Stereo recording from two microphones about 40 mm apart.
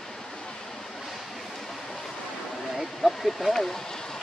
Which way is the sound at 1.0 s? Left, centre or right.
Centre.